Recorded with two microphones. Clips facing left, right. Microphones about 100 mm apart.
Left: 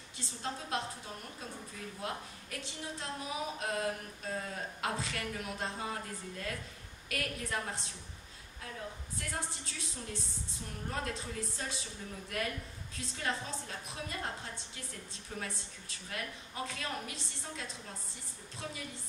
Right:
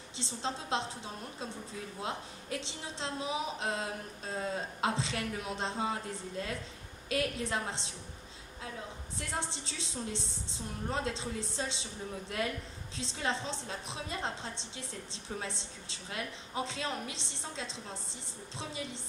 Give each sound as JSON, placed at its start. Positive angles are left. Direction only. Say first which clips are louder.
{"t": 0.2, "sound": "a woman's voice", "louder": "right 3 dB", "side_deg": -25}
{"t": 9.3, "sound": "a woman's voice", "louder": "right 4 dB", "side_deg": -25}
{"t": 12.9, "sound": "a woman's voice", "louder": "right 3 dB", "side_deg": -25}